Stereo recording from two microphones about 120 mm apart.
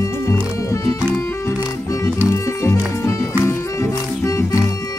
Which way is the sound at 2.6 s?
25° left (ahead or behind).